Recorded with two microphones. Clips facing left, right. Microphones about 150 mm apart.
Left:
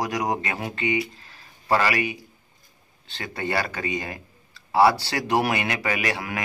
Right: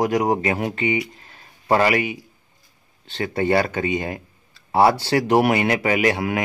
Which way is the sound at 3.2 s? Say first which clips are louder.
Right 8 dB; 25° right (ahead or behind).